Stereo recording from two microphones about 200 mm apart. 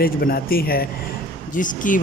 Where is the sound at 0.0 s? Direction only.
50° left (ahead or behind).